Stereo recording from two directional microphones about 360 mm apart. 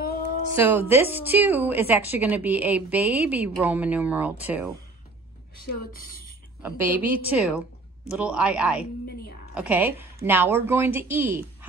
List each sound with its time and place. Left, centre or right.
0.7 s a woman's voice: centre
5.9 s speech: left
6.6 s a woman's voice: centre